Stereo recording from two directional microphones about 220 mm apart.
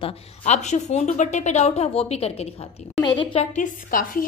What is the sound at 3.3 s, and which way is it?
Speech, 35° left (ahead or behind).